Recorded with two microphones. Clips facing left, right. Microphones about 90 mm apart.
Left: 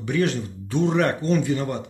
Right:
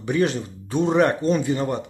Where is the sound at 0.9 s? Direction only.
20° right (ahead or behind).